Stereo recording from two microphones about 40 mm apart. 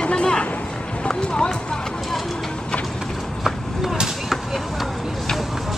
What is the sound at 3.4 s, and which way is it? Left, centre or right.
Chop, centre.